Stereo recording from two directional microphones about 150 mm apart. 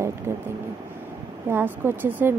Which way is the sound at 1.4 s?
15° right (ahead or behind).